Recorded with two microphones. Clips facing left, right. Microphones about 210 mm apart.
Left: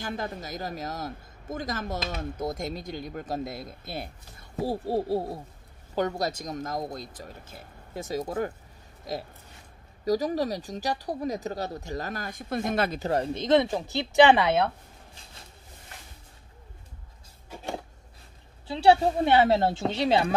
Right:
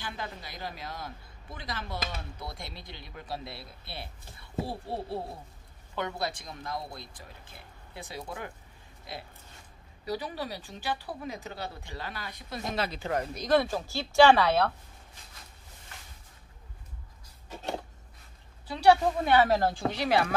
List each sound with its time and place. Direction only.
0.0 s speech: 45° left (ahead or behind)
13.1 s speech: 30° left (ahead or behind)
18.7 s speech: 25° left (ahead or behind)